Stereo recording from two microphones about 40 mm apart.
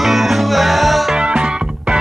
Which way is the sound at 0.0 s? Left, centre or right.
Centre.